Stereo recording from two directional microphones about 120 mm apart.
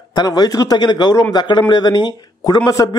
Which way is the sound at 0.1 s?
35° left (ahead or behind).